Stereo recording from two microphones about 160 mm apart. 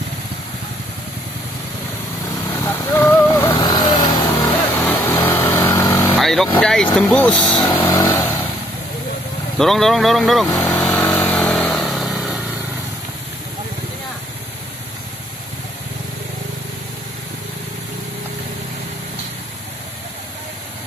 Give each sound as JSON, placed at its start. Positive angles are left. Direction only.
{"t": 2.5, "sound": "vehicle", "side_deg": 15}
{"t": 3.5, "sound": "vehicle", "side_deg": 30}
{"t": 4.9, "sound": "vehicle", "side_deg": 10}
{"t": 6.1, "sound": "vehicle", "side_deg": 0}
{"t": 6.6, "sound": "speech", "side_deg": 5}
{"t": 7.7, "sound": "vehicle", "side_deg": 15}
{"t": 9.6, "sound": "speech", "side_deg": 0}
{"t": 10.5, "sound": "vehicle", "side_deg": 10}